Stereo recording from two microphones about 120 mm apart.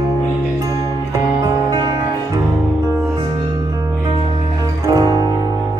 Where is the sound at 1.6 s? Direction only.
35° right (ahead or behind).